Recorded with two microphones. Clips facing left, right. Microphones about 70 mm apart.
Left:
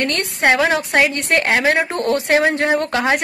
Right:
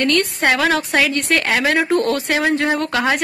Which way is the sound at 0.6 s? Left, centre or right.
Centre.